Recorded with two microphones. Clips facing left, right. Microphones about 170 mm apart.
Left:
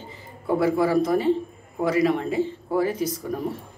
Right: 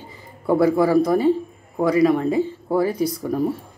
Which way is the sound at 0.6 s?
35° right (ahead or behind).